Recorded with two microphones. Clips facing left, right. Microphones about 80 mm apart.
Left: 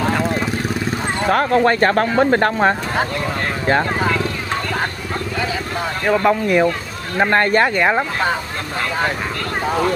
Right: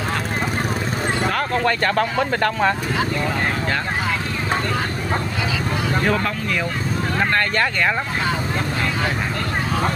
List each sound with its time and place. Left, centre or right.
1.3 s bow-wow: left
6.0 s speech: centre